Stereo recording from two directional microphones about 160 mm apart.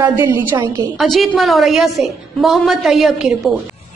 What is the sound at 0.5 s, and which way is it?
Speech, 20° right (ahead or behind).